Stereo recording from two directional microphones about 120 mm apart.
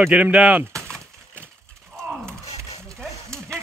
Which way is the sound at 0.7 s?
25° right (ahead or behind).